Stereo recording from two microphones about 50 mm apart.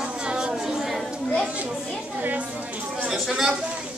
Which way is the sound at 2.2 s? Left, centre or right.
Right.